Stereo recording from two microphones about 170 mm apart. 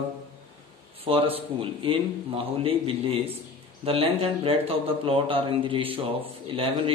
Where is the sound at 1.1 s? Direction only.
35° right (ahead or behind).